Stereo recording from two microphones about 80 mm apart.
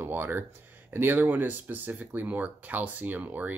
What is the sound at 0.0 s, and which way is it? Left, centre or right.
Speech, right.